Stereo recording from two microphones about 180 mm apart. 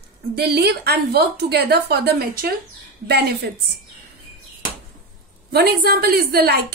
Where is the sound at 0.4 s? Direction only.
65° right (ahead or behind).